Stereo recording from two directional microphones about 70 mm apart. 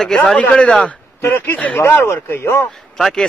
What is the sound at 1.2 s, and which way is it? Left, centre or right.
Speech, left.